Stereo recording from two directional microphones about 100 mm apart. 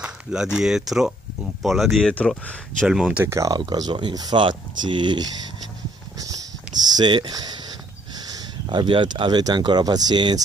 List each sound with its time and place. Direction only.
0.0 s speech: 5° right (ahead or behind); by 2.9 s 10° left (ahead or behind)
2.9 s speech: 5° right (ahead or behind)
3.3 s speech: 30° right (ahead or behind)
3.5 s speech: 45° right (ahead or behind)
4.4 s speech: 55° right (ahead or behind)
6.1 s a sound: 35° right (ahead or behind)
6.7 s a sound: 10° right (ahead or behind)
7.0 s speech: 45° right (ahead or behind)